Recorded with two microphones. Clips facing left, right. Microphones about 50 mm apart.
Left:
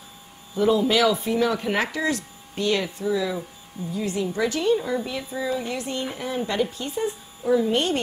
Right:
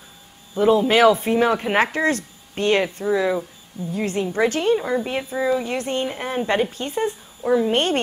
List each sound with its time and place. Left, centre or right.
0.6 s speech: right